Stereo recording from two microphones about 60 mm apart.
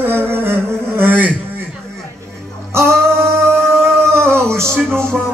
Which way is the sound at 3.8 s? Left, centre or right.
Right.